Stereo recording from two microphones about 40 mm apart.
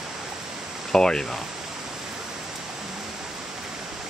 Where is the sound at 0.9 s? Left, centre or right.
Centre.